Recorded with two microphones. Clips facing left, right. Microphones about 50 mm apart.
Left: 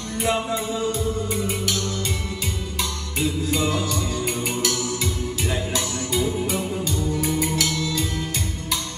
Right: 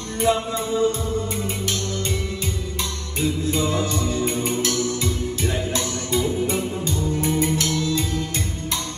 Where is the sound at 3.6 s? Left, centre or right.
Right.